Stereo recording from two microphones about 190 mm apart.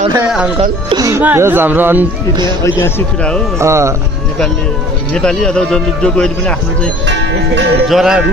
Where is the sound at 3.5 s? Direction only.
15° right (ahead or behind).